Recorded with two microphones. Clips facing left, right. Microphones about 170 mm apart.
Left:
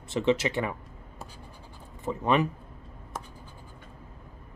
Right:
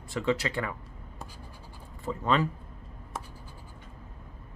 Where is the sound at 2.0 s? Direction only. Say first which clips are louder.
Left 2 dB; 20° left (ahead or behind).